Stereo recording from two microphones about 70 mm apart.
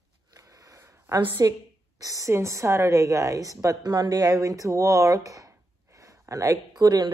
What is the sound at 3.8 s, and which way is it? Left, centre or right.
Speech, right.